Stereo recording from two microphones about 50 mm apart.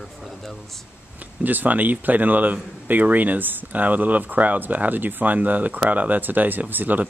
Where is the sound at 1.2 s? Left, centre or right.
Right.